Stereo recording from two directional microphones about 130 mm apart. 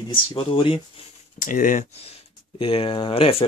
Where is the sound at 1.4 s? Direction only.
90° left.